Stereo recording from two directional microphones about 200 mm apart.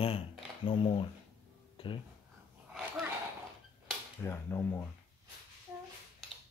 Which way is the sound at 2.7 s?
5° right (ahead or behind).